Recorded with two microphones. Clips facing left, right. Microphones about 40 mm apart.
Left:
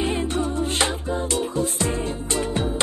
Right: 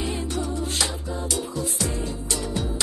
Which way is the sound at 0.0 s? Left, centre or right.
Left.